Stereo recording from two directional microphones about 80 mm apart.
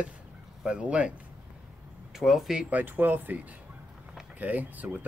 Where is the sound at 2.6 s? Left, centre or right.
Centre.